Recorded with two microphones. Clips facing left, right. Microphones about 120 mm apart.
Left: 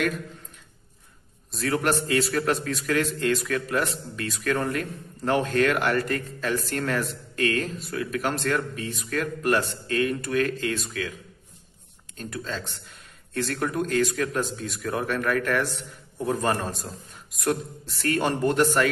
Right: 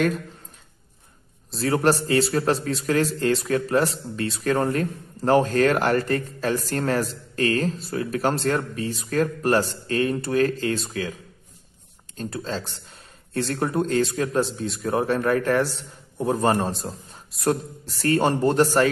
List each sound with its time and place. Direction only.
1.5 s a man's voice: 30° right (ahead or behind)
12.2 s a man's voice: 30° right (ahead or behind)